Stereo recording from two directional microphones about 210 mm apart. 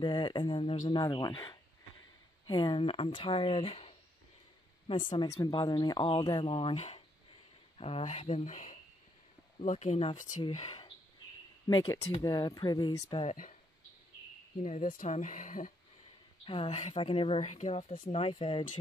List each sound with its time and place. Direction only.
0.0 s speech: 20° left (ahead or behind)
5.4 s speech: 20° left (ahead or behind)
14.6 s speech: 35° left (ahead or behind)
16.4 s speech: 25° left (ahead or behind)